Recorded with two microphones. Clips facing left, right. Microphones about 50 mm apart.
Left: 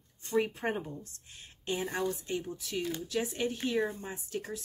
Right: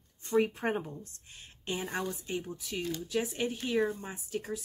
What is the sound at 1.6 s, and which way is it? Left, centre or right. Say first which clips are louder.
Speech: left 2 dB; centre.